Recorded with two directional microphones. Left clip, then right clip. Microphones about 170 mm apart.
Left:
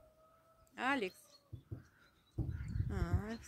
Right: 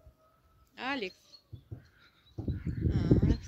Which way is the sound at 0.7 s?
50° left (ahead or behind).